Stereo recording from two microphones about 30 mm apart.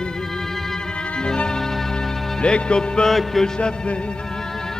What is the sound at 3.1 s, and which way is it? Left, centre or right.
Music, centre.